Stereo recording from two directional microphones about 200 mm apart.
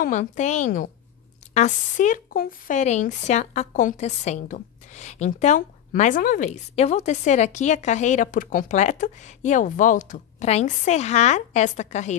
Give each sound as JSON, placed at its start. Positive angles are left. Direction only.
{"t": 0.0, "sound": "speech", "side_deg": 35}